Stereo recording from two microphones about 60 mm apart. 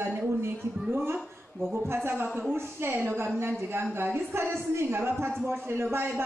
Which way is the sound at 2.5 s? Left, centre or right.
Right.